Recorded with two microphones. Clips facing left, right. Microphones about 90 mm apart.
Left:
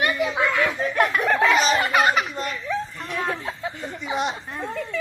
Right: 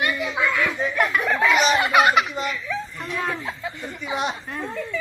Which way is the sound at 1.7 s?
5° right (ahead or behind).